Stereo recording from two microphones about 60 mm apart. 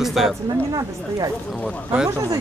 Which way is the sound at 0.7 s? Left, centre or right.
Right.